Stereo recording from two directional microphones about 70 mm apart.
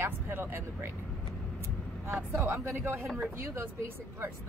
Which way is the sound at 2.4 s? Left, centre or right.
Right.